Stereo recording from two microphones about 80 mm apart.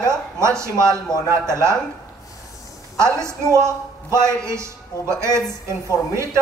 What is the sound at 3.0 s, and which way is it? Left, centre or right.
A man's voice, right.